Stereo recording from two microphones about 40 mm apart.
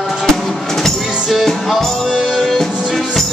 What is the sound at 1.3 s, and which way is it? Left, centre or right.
Music, centre.